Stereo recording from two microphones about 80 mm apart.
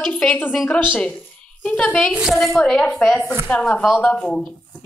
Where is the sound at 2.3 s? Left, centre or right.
Centre.